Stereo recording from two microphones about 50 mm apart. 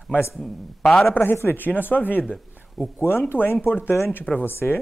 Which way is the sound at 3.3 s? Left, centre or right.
Left.